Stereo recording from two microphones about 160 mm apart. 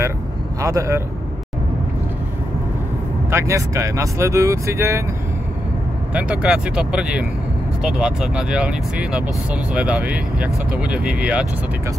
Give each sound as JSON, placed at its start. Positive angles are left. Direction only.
{"t": 0.6, "sound": "a man's voice", "side_deg": -20}
{"t": 3.3, "sound": "speech", "side_deg": -15}
{"t": 6.1, "sound": "speech", "side_deg": -5}